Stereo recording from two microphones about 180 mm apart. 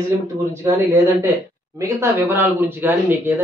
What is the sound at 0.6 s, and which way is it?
Speech, 10° right (ahead or behind).